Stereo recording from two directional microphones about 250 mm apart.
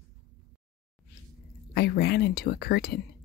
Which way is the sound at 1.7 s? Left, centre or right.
Left.